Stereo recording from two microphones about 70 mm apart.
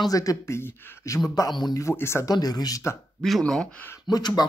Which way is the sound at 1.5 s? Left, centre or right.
Left.